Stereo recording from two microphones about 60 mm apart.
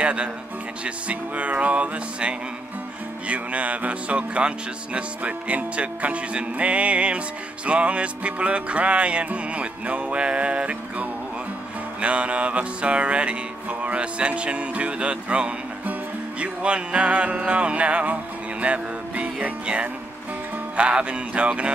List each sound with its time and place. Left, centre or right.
0.0 s speech: centre
15.9 s music: centre
20.7 s speech: centre